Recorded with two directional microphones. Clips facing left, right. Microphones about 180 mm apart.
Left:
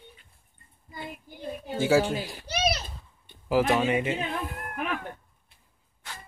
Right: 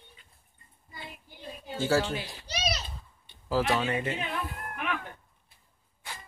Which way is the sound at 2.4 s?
55° left (ahead or behind).